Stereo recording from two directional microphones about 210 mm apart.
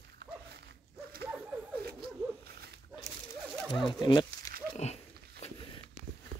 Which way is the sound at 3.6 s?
Centre (ahead or behind).